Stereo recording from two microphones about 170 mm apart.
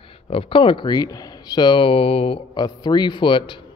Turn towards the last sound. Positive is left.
turn(degrees=30)  # may be behind; listen again after turning